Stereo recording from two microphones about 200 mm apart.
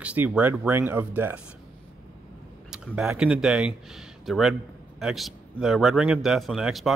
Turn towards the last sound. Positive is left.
turn(degrees=0)  # may be behind; listen again after turning